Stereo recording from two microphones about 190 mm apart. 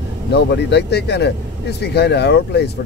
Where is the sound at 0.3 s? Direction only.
60° left (ahead or behind).